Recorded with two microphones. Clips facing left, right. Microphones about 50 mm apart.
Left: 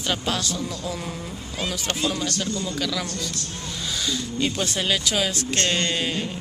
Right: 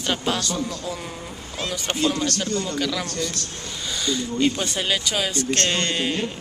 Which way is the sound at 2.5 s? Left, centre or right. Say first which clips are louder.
Right 2 dB; right.